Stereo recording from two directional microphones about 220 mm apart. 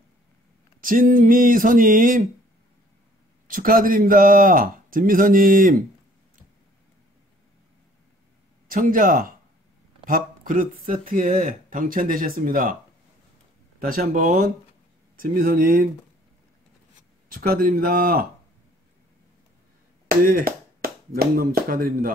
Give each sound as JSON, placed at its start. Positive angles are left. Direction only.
{"t": 0.7, "sound": "speech", "side_deg": -40}
{"t": 3.4, "sound": "speech", "side_deg": -40}
{"t": 8.6, "sound": "speech", "side_deg": -40}
{"t": 13.7, "sound": "speech", "side_deg": -40}
{"t": 17.3, "sound": "speech", "side_deg": -40}
{"t": 20.2, "sound": "speech", "side_deg": -40}